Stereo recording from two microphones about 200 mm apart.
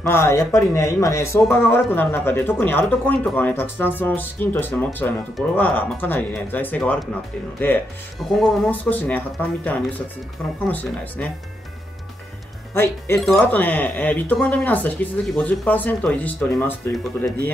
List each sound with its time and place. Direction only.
0.0 s speech: 15° left (ahead or behind)
10.7 s speech: 10° left (ahead or behind)
12.7 s speech: 10° left (ahead or behind)